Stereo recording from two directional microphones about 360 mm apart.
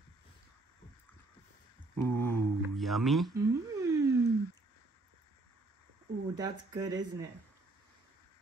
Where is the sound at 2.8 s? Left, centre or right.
Centre.